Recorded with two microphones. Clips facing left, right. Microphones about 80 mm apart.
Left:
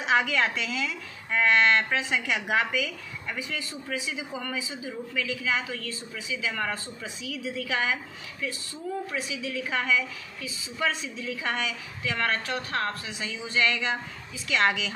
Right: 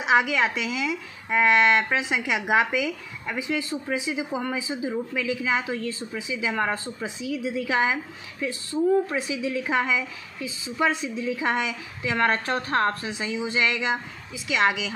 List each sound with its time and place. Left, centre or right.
0.0 s a woman's voice: centre